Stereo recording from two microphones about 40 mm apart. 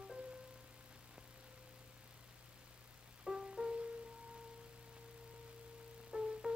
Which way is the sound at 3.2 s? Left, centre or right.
Centre.